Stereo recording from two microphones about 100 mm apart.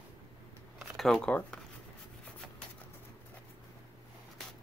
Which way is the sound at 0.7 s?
Centre (ahead or behind).